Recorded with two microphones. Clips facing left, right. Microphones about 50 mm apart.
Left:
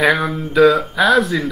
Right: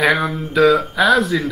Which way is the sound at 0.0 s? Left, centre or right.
Centre.